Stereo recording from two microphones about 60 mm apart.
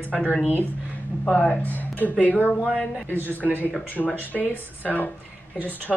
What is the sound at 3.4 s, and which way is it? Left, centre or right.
Speech, left.